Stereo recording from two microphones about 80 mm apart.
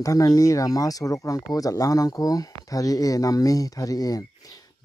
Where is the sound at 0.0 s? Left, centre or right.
Left.